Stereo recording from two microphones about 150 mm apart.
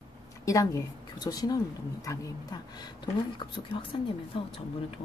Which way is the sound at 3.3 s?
35° left (ahead or behind).